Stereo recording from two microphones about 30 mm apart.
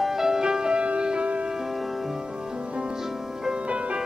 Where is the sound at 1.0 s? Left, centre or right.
Right.